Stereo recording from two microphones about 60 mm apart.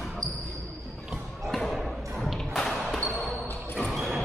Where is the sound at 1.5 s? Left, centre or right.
Centre.